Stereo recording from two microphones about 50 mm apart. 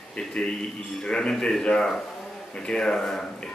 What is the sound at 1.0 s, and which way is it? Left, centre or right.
A man's voice, centre.